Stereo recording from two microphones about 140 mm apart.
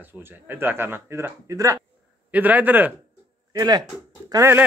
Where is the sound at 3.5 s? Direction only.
30° right (ahead or behind).